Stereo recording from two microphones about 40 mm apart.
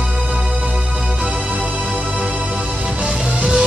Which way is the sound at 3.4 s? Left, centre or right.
Right.